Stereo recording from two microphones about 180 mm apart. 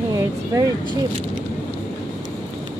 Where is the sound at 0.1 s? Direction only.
20° right (ahead or behind).